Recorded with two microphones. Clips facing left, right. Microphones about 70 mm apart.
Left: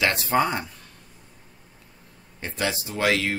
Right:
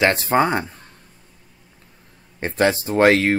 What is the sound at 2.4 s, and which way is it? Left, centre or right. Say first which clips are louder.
Speech: right 9 dB; right.